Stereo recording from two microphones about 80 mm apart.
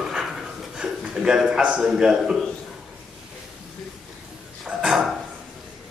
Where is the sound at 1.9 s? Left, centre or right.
Centre.